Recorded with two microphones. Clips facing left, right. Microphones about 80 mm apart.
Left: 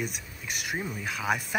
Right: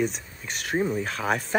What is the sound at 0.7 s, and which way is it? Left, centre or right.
Speech, centre.